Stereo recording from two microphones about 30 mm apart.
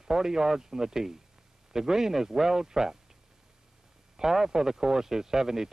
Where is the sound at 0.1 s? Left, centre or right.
Centre.